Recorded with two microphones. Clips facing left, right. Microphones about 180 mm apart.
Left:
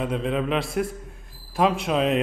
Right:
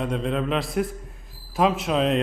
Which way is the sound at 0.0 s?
Centre (ahead or behind).